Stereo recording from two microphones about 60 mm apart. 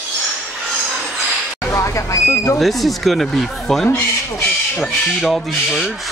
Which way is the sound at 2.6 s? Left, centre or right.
Centre.